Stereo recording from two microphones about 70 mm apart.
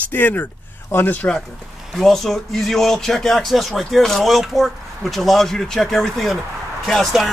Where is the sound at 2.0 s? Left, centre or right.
Centre.